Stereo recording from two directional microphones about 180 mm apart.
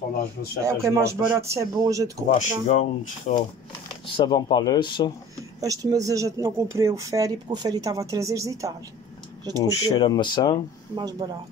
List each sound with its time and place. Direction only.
0.7 s speech: 15° right (ahead or behind)
2.3 s speech: 40° left (ahead or behind)
4.1 s speech: 25° left (ahead or behind)
5.6 s speech: 20° right (ahead or behind)
9.6 s speech: 20° left (ahead or behind)
11.0 s speech: 20° right (ahead or behind)